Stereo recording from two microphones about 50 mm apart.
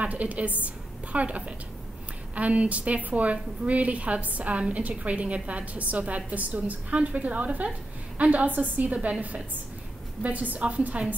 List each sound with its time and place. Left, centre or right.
0.0 s a woman's voice: right
10.2 s a woman's voice: right